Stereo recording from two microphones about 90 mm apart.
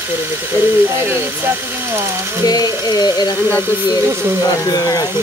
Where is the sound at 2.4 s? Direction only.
45° left (ahead or behind).